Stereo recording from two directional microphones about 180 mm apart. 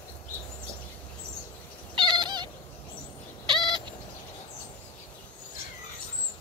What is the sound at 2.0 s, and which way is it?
Cat, 25° right (ahead or behind).